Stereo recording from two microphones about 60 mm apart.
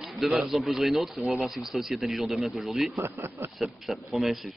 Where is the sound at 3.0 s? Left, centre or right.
Right.